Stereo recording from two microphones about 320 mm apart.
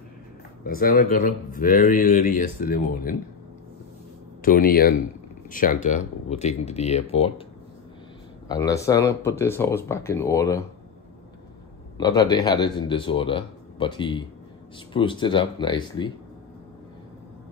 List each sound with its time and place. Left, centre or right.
0.7 s speech: left
4.4 s speech: left
8.5 s speech: centre
12.0 s speech: centre